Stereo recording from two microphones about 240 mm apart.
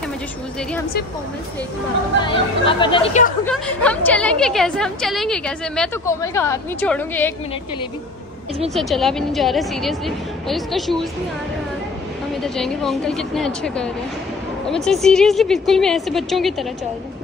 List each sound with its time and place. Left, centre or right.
2.2 s speech: left
3.4 s a woman's voice: centre
8.7 s a woman's voice: centre
12.5 s a woman's voice: centre